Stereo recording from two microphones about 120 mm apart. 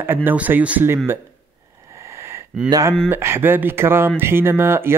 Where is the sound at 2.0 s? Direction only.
20° right (ahead or behind).